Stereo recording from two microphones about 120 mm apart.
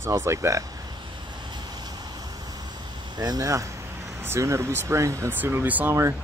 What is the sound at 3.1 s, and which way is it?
Speech, 35° right (ahead or behind).